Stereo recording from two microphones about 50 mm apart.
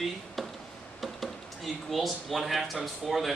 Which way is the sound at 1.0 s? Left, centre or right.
Centre.